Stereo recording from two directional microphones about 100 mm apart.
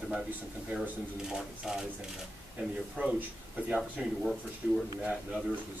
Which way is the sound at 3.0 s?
15° right (ahead or behind).